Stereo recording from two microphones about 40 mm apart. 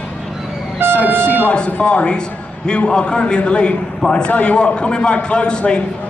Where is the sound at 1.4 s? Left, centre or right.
Left.